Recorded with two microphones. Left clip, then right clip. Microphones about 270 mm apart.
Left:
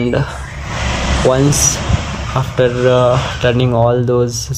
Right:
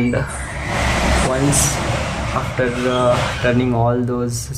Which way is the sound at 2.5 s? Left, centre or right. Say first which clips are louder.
Left 8 dB; left.